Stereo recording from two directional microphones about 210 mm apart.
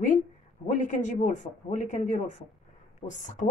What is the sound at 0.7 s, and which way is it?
A woman's voice, 35° left (ahead or behind).